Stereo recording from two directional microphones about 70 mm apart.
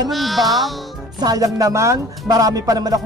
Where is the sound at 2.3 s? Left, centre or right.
Right.